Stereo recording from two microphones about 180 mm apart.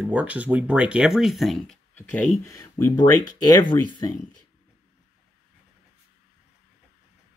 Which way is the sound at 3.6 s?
25° left (ahead or behind).